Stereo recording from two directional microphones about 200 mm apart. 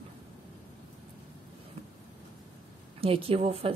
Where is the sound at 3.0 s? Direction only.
30° right (ahead or behind).